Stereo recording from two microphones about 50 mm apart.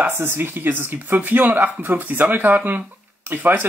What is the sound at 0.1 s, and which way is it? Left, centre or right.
Speech, right.